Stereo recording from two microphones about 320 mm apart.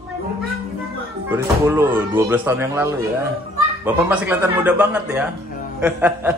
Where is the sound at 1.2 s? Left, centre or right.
Centre.